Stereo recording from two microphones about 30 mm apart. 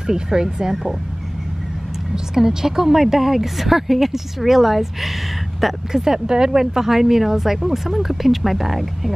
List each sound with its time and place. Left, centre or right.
0.0 s speech: right
2.1 s speech: centre